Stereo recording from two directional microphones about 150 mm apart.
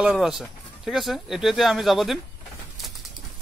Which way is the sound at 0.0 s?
5° right (ahead or behind).